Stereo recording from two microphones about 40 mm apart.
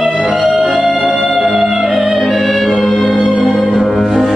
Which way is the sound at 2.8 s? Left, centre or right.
Centre.